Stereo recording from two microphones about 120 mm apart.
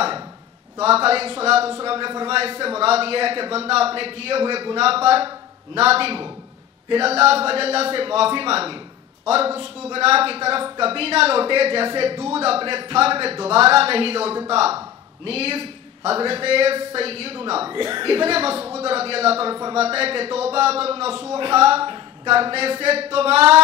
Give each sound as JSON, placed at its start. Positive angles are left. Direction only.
{"t": 0.7, "sound": "a woman's voice", "side_deg": -55}